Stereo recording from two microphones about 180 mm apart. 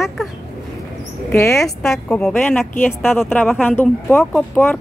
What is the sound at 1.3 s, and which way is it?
Speech, 15° left (ahead or behind).